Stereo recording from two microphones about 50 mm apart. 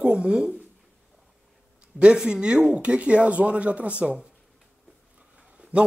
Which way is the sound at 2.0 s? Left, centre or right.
Centre.